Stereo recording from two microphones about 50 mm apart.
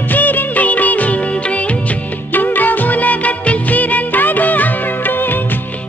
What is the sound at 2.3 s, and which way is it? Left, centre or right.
Music of bollywood, left.